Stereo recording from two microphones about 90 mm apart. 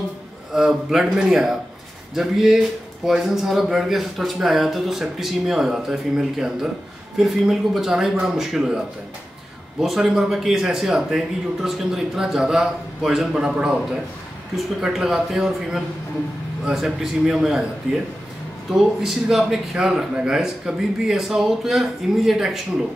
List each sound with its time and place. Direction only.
0.5 s speech: 5° right (ahead or behind)
14.8 s speech: 5° right (ahead or behind)